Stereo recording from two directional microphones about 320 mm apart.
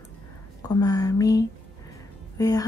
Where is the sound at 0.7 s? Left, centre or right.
Centre.